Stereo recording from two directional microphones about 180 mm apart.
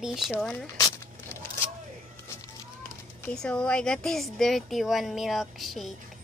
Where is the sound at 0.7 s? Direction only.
20° left (ahead or behind).